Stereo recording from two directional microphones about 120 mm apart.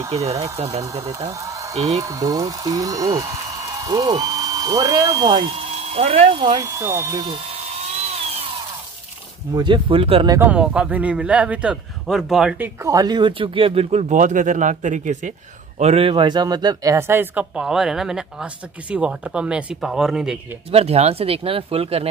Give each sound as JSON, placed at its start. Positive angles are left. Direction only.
{"t": 0.1, "sound": "speech", "side_deg": -60}
{"t": 1.4, "sound": "a sound", "side_deg": -25}
{"t": 2.0, "sound": "speech", "side_deg": -30}
{"t": 5.8, "sound": "speech", "side_deg": -60}
{"t": 6.6, "sound": "speech", "side_deg": -25}
{"t": 8.1, "sound": "power tool", "side_deg": -55}
{"t": 9.5, "sound": "speech", "side_deg": -40}
{"t": 10.4, "sound": "a man's voice", "side_deg": -10}
{"t": 12.9, "sound": "speech", "side_deg": -35}
{"t": 15.8, "sound": "speech", "side_deg": -55}
{"t": 17.6, "sound": "speech", "side_deg": -5}
{"t": 20.7, "sound": "speech", "side_deg": -60}